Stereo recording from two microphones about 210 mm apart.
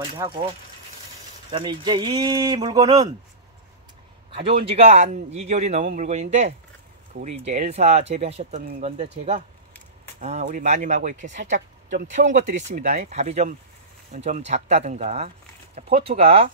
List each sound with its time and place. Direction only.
0.2 s speech: 15° right (ahead or behind)
1.5 s speech: 20° right (ahead or behind)
4.3 s a man's voice: 25° right (ahead or behind)
10.2 s a man's voice: 35° right (ahead or behind)
11.5 s speech: 55° right (ahead or behind)
12.1 s a man's voice: 35° right (ahead or behind)